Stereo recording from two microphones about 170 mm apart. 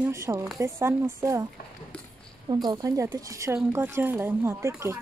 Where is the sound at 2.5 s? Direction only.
25° right (ahead or behind).